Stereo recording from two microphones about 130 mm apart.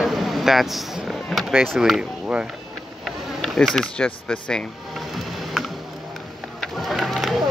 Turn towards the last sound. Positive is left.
turn(degrees=0)  # may be behind; listen again after turning